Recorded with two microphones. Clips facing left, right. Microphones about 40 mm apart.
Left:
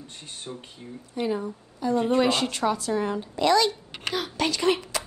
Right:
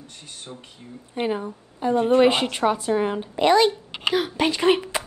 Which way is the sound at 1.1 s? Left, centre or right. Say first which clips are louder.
Right 2 dB; right.